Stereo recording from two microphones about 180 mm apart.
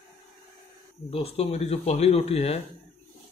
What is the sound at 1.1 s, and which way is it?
Speech, 30° left (ahead or behind).